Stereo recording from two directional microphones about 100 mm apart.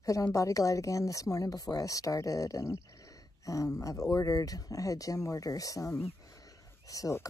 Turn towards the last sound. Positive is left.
turn(degrees=35)  # may be behind; listen again after turning